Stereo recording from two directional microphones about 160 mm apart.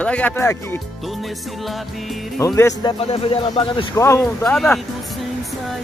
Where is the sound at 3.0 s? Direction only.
40° left (ahead or behind).